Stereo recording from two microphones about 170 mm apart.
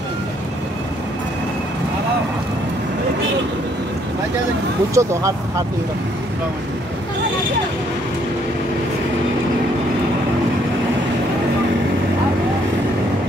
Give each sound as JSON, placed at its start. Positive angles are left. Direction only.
{"t": 5.0, "sound": "speech", "side_deg": -20}